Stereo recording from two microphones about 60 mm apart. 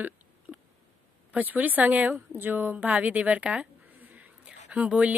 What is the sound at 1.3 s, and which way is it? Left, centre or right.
A woman's voice, right.